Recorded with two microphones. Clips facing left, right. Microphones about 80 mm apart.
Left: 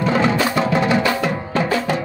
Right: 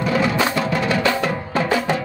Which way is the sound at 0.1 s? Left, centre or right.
Left.